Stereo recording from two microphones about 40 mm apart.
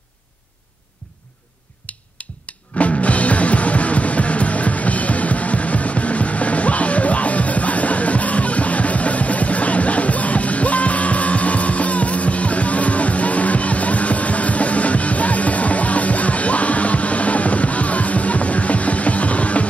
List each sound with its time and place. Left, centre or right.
1.9 s music: left